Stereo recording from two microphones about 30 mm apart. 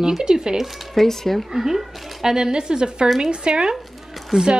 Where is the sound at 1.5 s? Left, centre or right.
Centre.